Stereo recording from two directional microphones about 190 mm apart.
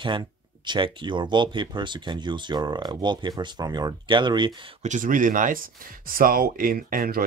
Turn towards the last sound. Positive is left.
turn(degrees=-50)  # may be behind; listen again after turning